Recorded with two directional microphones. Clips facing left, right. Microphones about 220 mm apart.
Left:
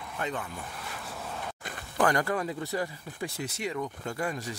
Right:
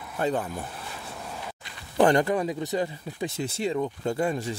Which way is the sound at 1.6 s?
50° left (ahead or behind).